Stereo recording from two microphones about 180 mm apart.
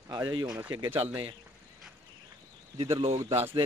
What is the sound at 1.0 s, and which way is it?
Speech, 30° right (ahead or behind).